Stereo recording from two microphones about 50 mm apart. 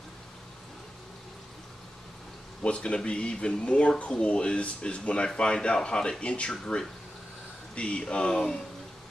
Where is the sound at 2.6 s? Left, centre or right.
Left.